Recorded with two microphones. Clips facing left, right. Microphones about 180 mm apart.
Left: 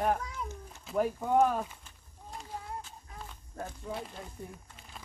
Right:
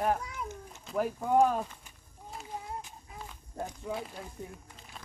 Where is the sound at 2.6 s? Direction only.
15° right (ahead or behind).